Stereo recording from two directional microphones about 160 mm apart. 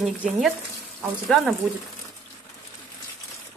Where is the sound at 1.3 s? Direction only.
Centre (ahead or behind).